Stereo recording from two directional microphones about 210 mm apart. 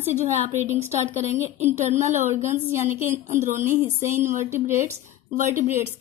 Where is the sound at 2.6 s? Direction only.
10° right (ahead or behind).